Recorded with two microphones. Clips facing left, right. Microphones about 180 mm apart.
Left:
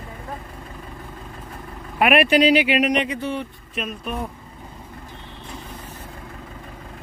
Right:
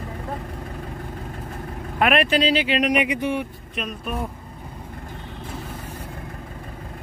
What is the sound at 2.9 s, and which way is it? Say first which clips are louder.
Speech: right 1 dB; 10° right (ahead or behind).